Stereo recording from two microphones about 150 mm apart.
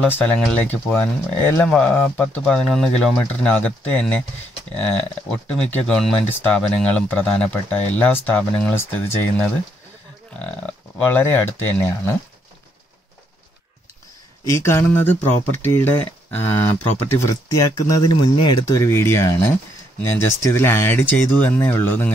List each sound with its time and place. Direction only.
0.0 s speech: 5° left (ahead or behind)
5.3 s speech: 5° left (ahead or behind)
11.1 s speech: 15° left (ahead or behind)
14.5 s speech: 20° left (ahead or behind)